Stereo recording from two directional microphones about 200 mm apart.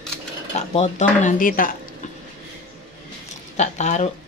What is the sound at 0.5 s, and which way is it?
Speech, 35° left (ahead or behind).